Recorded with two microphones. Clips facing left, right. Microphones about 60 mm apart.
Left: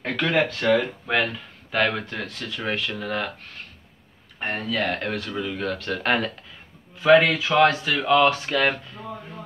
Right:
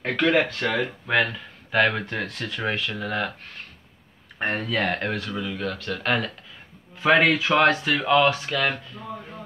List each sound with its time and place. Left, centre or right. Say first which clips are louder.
0.0 s speech: right 1 dB; centre
2.0 s speech: right 2 dB; right
2.7 s speech: left 4 dB; centre
4.4 s speech: right 1 dB; right
5.0 s speech: even; centre
5.3 s speech: left 2 dB; centre
7.0 s speech: left 2 dB; right
8.5 s speech: left 3 dB; centre